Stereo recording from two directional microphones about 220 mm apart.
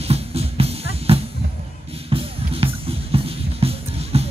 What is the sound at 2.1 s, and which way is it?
Music, 25° right (ahead or behind).